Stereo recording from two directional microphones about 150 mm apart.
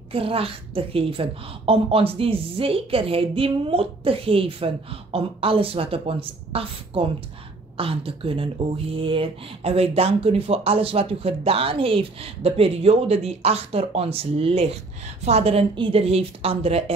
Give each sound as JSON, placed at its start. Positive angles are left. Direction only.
{"t": 0.1, "sound": "speech", "side_deg": -40}